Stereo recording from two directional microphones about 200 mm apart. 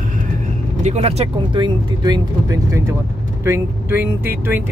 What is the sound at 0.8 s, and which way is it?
Speech, 30° right (ahead or behind).